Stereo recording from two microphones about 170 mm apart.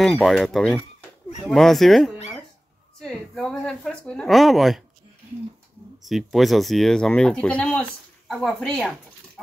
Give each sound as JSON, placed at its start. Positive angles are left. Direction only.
{"t": 0.0, "sound": "speech", "side_deg": 0}
{"t": 6.0, "sound": "speech", "side_deg": 0}